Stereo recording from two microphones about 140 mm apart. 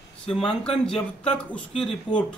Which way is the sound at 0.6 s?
45° left (ahead or behind).